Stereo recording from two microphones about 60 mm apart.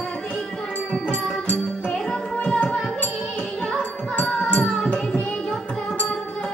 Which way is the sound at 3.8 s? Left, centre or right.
Centre.